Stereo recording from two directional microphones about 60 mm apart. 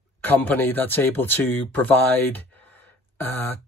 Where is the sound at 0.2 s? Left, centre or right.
Left.